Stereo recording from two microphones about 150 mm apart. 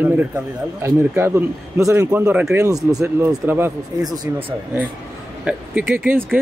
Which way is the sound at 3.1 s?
15° right (ahead or behind).